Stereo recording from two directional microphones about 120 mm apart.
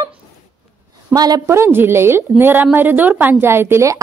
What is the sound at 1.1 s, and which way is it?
Speech, 30° right (ahead or behind).